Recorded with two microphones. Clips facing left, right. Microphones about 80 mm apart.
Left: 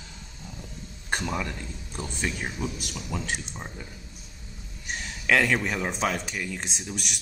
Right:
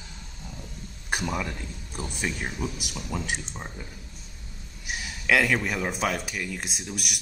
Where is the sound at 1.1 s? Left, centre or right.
Centre.